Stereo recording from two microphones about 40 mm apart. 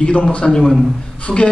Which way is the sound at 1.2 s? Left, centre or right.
Left.